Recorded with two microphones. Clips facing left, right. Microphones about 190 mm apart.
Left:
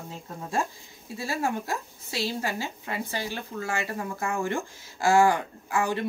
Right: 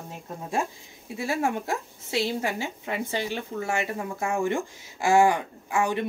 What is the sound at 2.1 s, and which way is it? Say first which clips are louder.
Speech: right 3 dB; 20° right (ahead or behind).